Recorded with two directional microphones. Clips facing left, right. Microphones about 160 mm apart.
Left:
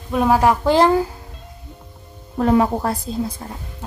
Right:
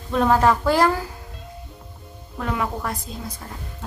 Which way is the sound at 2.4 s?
35° left (ahead or behind).